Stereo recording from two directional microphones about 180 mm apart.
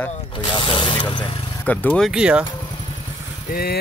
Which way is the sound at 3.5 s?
60° left (ahead or behind).